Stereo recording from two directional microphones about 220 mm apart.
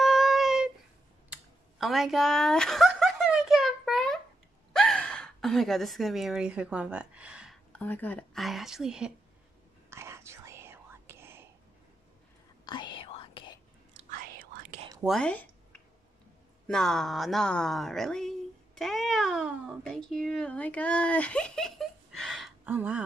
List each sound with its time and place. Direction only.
0.0 s a sound: centre (ahead or behind)
1.3 s chuckle: centre (ahead or behind)
4.7 s a woman's voice: 5° left (ahead or behind)
7.7 s a woman's voice: 10° left (ahead or behind)
9.8 s whispering: 10° right (ahead or behind)
12.6 s whispering: 20° left (ahead or behind)
15.0 s a sound: 5° left (ahead or behind)